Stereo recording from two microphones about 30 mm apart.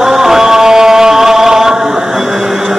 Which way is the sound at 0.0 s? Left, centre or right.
Centre.